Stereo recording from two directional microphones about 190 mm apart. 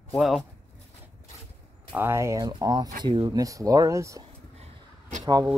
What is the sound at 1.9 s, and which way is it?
Speech, 10° right (ahead or behind).